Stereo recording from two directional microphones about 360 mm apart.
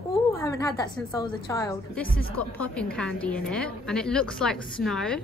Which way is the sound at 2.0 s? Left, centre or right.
Left.